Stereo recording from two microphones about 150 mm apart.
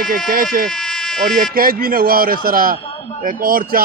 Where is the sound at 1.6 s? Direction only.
75° right (ahead or behind).